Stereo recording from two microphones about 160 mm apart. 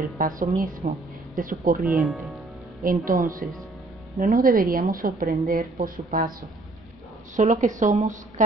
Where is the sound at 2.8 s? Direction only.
60° right (ahead or behind).